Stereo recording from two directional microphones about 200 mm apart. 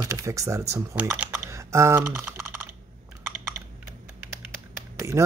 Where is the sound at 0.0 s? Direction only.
15° right (ahead or behind).